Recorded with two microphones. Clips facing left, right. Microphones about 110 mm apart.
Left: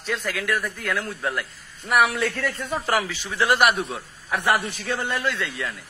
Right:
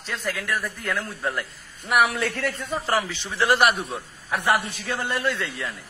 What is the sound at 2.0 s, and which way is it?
Speech, 20° right (ahead or behind).